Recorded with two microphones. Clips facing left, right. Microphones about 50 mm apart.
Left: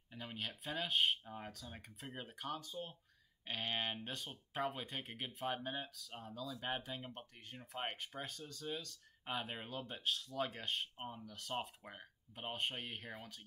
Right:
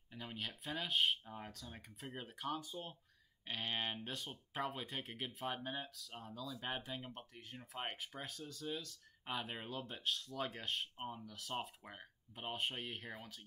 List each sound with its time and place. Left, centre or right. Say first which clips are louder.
0.1 s speech: even; centre